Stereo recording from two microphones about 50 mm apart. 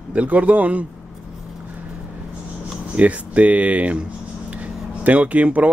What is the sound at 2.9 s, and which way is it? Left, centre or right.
Speech, right.